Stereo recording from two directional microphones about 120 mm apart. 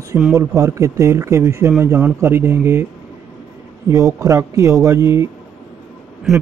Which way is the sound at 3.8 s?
25° right (ahead or behind).